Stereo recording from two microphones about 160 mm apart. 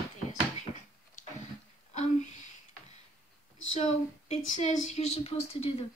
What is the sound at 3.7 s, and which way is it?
Speech, 45° left (ahead or behind).